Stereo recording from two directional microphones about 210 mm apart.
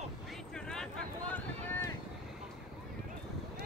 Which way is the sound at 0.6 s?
5° left (ahead or behind).